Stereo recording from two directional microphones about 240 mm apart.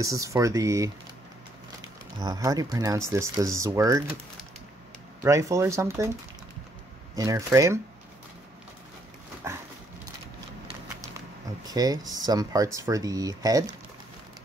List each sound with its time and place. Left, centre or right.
0.0 s speech: centre
2.1 s speech: centre
5.2 s speech: centre
7.2 s speech: centre
9.5 s dog: centre
11.6 s speech: centre